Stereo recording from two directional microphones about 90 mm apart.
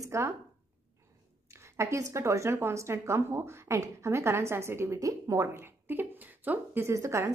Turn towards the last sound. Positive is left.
turn(degrees=-35)  # may be behind; listen again after turning